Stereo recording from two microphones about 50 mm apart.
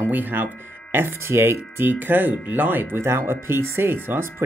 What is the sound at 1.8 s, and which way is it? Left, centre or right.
Speech, right.